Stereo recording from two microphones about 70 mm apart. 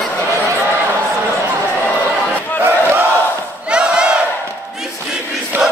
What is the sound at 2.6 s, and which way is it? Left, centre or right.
Battle cry, right.